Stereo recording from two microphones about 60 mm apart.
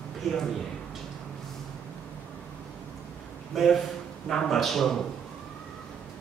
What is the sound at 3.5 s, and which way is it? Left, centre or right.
Speech, centre.